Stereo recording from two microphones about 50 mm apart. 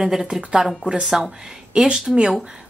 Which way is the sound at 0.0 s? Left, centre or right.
Centre.